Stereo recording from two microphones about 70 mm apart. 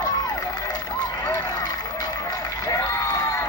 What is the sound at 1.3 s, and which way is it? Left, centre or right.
Run, left.